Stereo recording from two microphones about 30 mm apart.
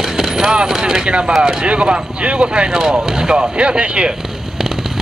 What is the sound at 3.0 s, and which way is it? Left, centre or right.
Speech, right.